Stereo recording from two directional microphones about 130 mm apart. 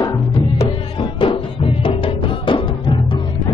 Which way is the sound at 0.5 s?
45° left (ahead or behind).